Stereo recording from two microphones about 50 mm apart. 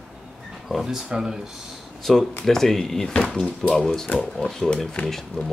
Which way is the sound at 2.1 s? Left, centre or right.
Centre.